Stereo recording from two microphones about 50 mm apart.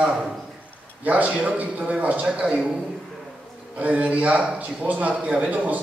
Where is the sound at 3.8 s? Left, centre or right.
Right.